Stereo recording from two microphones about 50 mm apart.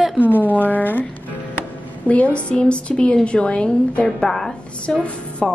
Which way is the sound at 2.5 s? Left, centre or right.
Centre.